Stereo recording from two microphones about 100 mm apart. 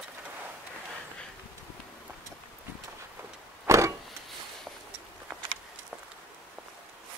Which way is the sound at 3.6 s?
30° right (ahead or behind).